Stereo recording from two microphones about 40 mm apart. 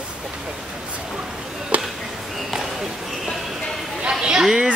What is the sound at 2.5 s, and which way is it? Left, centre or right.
Basketball bounce, centre.